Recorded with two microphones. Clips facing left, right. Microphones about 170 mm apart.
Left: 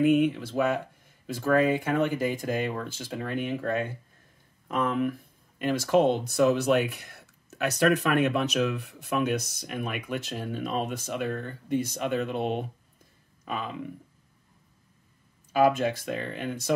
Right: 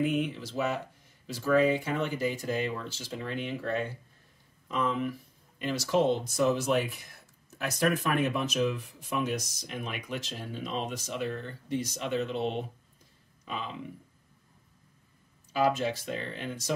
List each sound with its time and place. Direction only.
0.0 s speech: 55° left (ahead or behind)
15.5 s speech: 55° left (ahead or behind)